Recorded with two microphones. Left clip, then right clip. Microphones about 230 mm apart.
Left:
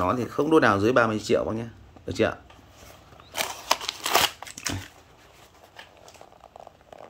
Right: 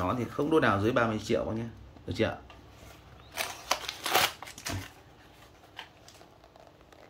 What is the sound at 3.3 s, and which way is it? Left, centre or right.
Scissors, left.